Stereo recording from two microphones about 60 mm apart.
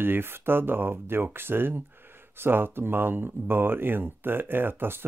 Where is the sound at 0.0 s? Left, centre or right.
Right.